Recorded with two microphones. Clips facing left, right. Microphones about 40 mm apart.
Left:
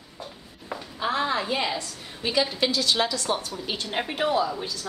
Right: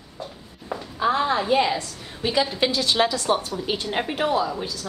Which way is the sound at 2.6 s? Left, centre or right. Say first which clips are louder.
Right 3 dB; right.